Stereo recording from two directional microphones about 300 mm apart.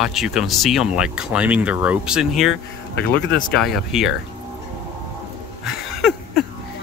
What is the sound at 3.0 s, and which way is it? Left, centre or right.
Speech, left.